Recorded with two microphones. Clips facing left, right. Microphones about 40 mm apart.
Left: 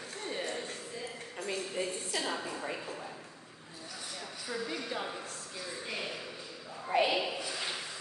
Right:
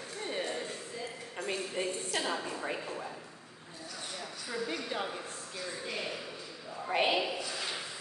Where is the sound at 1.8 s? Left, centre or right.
Right.